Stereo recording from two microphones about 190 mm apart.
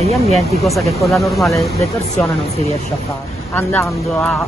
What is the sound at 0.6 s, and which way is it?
Speech, centre (ahead or behind).